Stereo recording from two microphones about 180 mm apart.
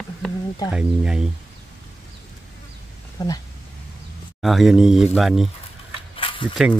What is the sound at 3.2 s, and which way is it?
Speech, 20° left (ahead or behind).